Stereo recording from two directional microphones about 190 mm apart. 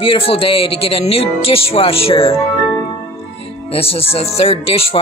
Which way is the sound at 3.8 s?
30° left (ahead or behind).